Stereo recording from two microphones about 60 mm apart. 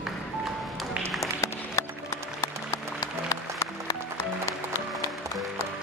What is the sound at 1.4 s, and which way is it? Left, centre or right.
Music, left.